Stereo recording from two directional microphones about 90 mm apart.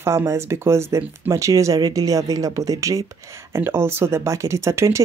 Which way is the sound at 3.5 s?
30° right (ahead or behind).